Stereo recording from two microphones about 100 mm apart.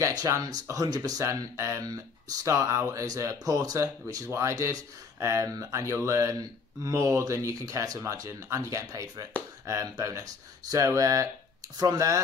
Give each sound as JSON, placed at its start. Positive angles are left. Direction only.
{"t": 0.0, "sound": "speech", "side_deg": -35}